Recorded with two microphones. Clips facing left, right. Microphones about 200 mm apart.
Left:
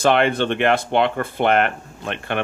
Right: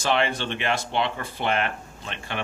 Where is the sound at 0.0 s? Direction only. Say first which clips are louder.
Left 7 dB; 55° left (ahead or behind).